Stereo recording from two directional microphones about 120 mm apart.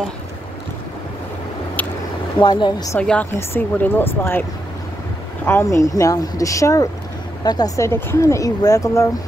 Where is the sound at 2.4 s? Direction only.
35° left (ahead or behind).